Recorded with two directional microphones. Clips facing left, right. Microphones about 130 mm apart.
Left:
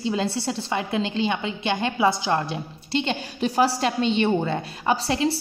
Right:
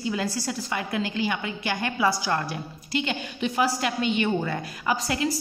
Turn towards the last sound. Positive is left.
turn(degrees=30)  # may be behind; listen again after turning